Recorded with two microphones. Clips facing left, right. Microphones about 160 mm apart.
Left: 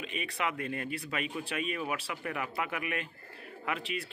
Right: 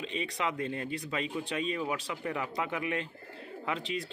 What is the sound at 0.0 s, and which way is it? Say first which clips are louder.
Speech: right 1 dB; 25° right (ahead or behind).